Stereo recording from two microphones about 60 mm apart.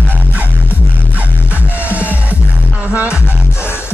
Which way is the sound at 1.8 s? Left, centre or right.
Right.